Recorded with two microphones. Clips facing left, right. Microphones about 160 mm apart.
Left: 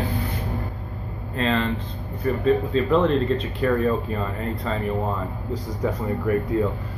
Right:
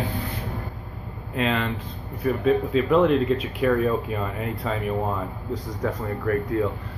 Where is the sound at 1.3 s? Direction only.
5° right (ahead or behind).